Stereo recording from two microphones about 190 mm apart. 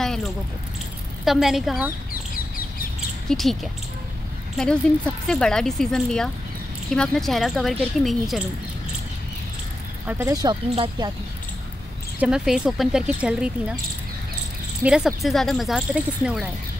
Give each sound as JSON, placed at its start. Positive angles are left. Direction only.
{"t": 0.0, "sound": "a sound", "side_deg": 0}
{"t": 1.2, "sound": "speech", "side_deg": 0}
{"t": 3.3, "sound": "speech", "side_deg": 0}
{"t": 10.0, "sound": "speech", "side_deg": -15}
{"t": 12.2, "sound": "speech", "side_deg": -5}
{"t": 14.8, "sound": "speech", "side_deg": -5}